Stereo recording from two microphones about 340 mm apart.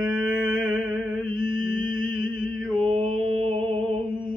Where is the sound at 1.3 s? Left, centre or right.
Left.